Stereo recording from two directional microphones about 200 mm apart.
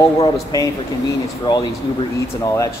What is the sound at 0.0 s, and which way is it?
A man's voice, 20° left (ahead or behind).